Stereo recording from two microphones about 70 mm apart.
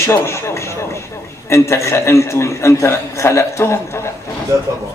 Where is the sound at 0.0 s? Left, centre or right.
Left.